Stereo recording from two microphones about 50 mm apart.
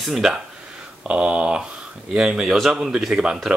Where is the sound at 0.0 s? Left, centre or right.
Centre.